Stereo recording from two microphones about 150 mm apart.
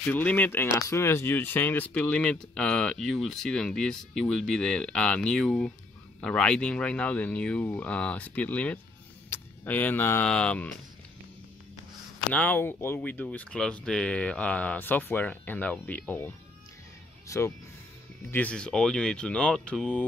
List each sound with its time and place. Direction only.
0.1 s speech: 10° left (ahead or behind)
12.4 s speech: 15° left (ahead or behind)
18.3 s speech: 10° left (ahead or behind)